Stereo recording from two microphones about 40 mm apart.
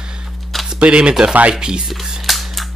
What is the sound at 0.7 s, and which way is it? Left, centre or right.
Speech, right.